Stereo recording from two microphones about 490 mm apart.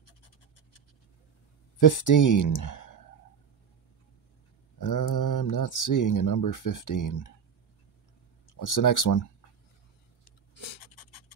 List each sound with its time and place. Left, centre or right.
1.8 s speech: left
4.7 s speech: left
8.5 s speech: left
10.5 s writing: left